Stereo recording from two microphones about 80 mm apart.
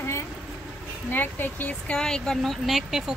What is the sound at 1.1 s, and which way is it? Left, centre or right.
Speech, left.